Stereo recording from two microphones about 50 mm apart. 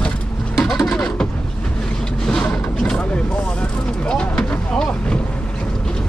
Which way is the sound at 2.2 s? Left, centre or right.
Centre.